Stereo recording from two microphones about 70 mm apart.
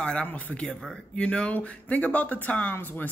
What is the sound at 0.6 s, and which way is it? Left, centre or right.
Speech, centre.